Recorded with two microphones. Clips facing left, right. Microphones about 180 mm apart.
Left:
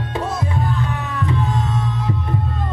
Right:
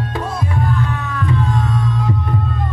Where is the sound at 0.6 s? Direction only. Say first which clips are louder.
Right 2 dB; 20° left (ahead or behind).